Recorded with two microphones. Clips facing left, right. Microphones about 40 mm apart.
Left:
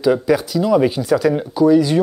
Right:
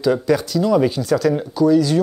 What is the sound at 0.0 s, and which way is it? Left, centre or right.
Speech, centre.